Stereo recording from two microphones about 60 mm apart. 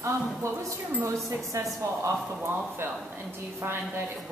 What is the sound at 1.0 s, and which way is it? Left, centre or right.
Speech, right.